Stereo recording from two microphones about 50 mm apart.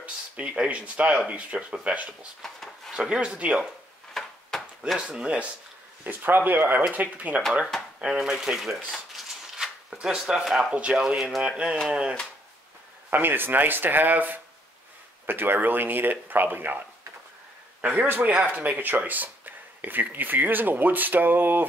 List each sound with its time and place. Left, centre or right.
0.0 s speech: right
2.4 s a sound: centre
3.0 s speech: centre
4.1 s chop: centre
5.0 s speech: right
6.0 s speech: right
8.0 s speech: centre
8.5 s speech: centre
9.8 s speech: centre
13.1 s speech: right
17.8 s speech: right